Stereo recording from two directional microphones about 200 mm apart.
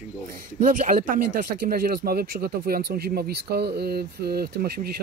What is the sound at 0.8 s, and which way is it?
Speech, 45° right (ahead or behind).